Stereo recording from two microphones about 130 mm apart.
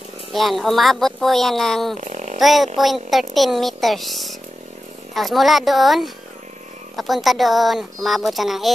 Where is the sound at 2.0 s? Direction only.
70° right (ahead or behind).